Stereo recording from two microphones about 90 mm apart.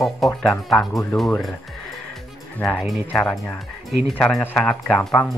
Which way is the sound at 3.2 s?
15° left (ahead or behind).